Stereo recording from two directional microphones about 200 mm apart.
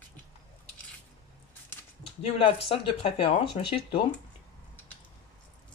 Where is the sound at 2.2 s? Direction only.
30° left (ahead or behind).